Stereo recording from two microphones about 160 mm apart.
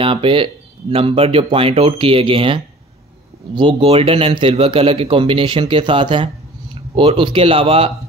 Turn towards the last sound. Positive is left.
turn(degrees=-35)  # may be behind; listen again after turning